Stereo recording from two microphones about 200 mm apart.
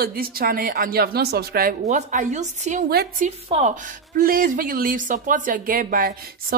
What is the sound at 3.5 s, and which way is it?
A woman's voice, 35° right (ahead or behind).